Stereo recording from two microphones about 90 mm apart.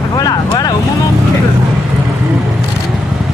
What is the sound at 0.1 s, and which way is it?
Vehicle, 50° left (ahead or behind).